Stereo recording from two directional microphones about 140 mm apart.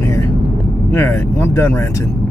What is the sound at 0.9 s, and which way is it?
Speech, 15° left (ahead or behind).